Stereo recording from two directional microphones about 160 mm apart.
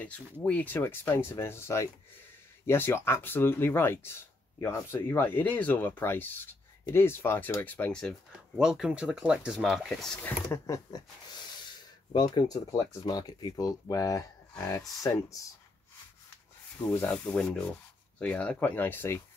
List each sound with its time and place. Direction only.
0.0 s speech: 10° left (ahead or behind)
10.2 s speech: 15° left (ahead or behind)
12.1 s speech: 25° left (ahead or behind)
16.9 s speech: 10° left (ahead or behind)